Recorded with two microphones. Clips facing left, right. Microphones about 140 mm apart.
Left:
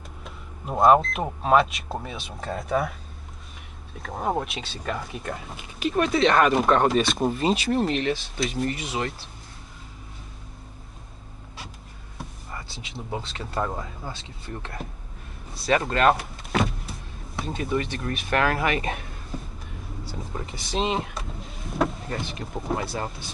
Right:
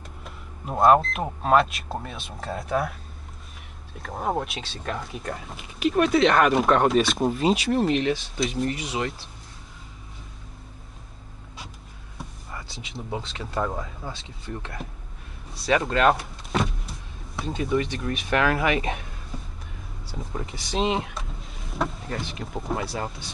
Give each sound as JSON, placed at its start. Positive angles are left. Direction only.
{"t": 0.2, "sound": "speech", "side_deg": 0}
{"t": 3.9, "sound": "speech", "side_deg": 0}
{"t": 12.2, "sound": "speech", "side_deg": 0}
{"t": 16.1, "sound": "vehicle", "side_deg": 0}
{"t": 17.4, "sound": "speech", "side_deg": 0}
{"t": 18.5, "sound": "speech", "side_deg": 40}
{"t": 19.3, "sound": "a sound", "side_deg": 0}
{"t": 20.1, "sound": "speech", "side_deg": 0}